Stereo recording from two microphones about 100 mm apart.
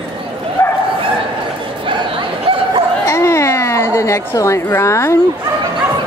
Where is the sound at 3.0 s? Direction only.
30° left (ahead or behind).